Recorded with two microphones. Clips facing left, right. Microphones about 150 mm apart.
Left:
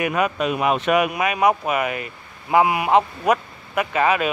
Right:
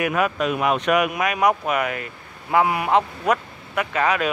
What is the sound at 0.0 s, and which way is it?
Speech, centre (ahead or behind).